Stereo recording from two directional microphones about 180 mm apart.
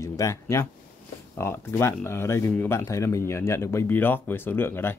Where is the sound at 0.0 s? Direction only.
15° left (ahead or behind).